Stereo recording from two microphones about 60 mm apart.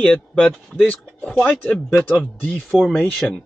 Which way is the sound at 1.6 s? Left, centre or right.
Centre.